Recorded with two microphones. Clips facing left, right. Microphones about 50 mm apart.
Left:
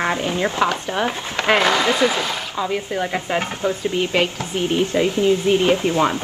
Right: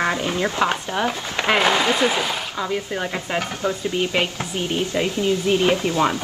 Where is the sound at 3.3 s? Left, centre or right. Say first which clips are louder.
Even; left.